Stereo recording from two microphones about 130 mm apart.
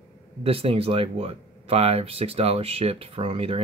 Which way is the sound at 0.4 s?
50° right (ahead or behind).